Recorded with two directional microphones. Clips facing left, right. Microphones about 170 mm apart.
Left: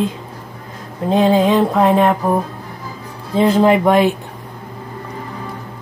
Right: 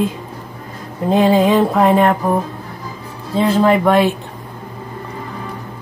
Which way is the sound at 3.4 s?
20° left (ahead or behind).